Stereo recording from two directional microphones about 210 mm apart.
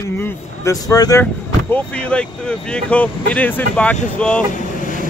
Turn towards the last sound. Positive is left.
turn(degrees=40)  # may be behind; listen again after turning